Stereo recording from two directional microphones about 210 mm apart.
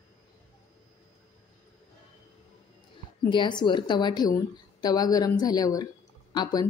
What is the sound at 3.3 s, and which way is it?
A woman's voice, 20° left (ahead or behind).